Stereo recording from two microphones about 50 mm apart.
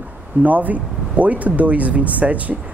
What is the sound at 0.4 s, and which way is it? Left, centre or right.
Speech, right.